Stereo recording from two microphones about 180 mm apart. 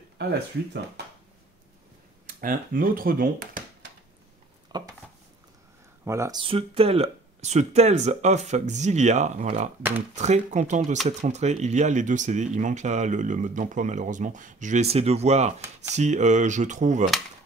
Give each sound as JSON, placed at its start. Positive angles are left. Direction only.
{"t": 2.2, "sound": "speech", "side_deg": -50}
{"t": 4.7, "sound": "dishes", "side_deg": -20}
{"t": 6.0, "sound": "speech", "side_deg": -15}
{"t": 6.4, "sound": "speech", "side_deg": -30}